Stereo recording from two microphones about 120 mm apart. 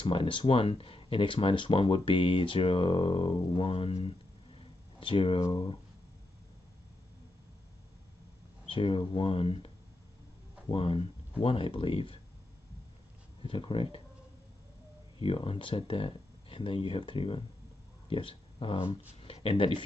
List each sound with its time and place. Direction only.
0.0 s speech: 45° left (ahead or behind)
8.6 s speech: 45° left (ahead or behind)
10.7 s speech: 50° left (ahead or behind)
13.4 s speech: 45° left (ahead or behind)
15.1 s speech: 50° left (ahead or behind)